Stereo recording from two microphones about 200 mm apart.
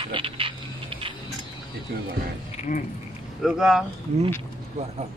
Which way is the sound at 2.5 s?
40° left (ahead or behind).